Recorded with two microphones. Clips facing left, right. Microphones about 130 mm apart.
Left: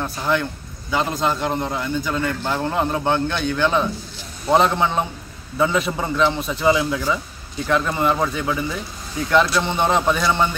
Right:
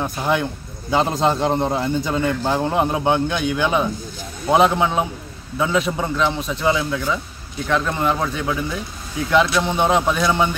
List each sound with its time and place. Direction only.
0.0 s a man's voice: 15° right (ahead or behind)